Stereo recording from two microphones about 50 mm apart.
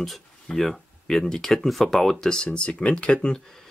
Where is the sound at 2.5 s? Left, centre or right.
Left.